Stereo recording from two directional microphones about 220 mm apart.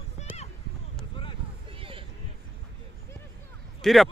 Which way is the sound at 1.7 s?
25° right (ahead or behind).